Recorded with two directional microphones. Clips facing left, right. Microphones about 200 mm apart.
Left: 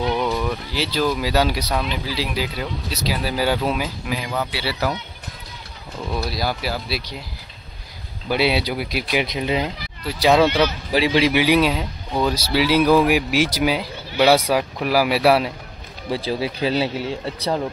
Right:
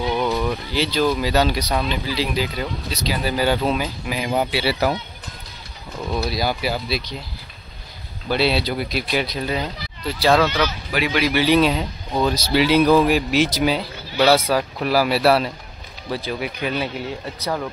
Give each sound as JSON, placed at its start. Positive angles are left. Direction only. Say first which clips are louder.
{"t": 0.0, "sound": "speech", "louder": "even", "side_deg": -5}
{"t": 4.2, "sound": "speech", "louder": "right 9 dB", "side_deg": -20}
{"t": 6.1, "sound": "speech", "louder": "right 2 dB", "side_deg": 0}
{"t": 8.3, "sound": "speech", "louder": "even", "side_deg": 10}
{"t": 10.9, "sound": "speech", "louder": "left 4 dB", "side_deg": 30}
{"t": 11.3, "sound": "speech", "louder": "even", "side_deg": 10}
{"t": 16.1, "sound": "speech", "louder": "left 3 dB", "side_deg": 30}